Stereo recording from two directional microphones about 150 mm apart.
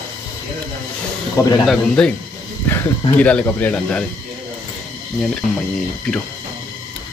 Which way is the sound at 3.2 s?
10° left (ahead or behind).